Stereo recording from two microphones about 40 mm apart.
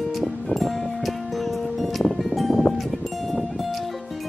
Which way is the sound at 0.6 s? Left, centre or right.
Centre.